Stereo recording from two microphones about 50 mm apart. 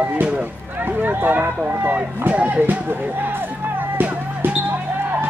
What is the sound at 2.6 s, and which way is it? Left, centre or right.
Music, right.